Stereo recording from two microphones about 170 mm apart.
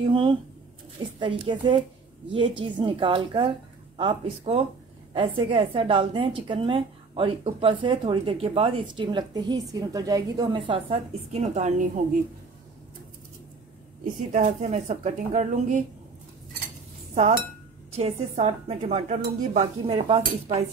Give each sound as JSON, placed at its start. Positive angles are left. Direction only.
{"t": 0.0, "sound": "a woman's voice", "side_deg": -30}
{"t": 2.8, "sound": "a woman's voice", "side_deg": -30}
{"t": 14.3, "sound": "a woman's voice", "side_deg": -45}
{"t": 17.1, "sound": "a woman's voice", "side_deg": -40}